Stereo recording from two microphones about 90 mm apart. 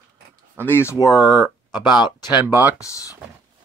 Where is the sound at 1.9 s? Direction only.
55° left (ahead or behind).